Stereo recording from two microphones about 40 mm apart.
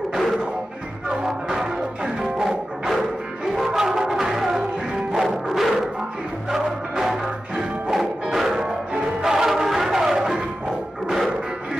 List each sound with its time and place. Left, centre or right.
1.2 s music: centre
5.6 s music: centre